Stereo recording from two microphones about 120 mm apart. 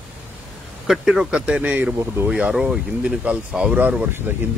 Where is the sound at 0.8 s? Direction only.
5° right (ahead or behind).